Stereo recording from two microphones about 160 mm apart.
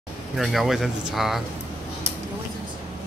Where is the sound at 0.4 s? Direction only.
Centre (ahead or behind).